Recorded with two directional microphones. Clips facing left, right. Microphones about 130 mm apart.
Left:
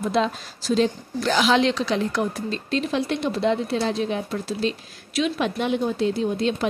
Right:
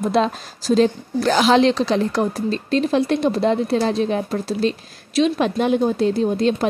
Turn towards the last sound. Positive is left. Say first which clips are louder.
# right 5 dB
turn(degrees=-40)  # may be behind; listen again after turning